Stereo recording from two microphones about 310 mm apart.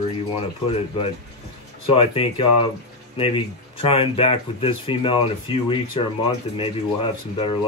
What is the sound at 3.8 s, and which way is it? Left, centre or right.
Speech, centre.